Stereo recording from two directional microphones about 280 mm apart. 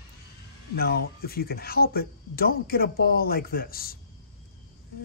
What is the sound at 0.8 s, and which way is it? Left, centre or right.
Speech, left.